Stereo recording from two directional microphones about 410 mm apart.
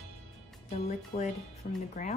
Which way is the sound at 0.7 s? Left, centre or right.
Centre.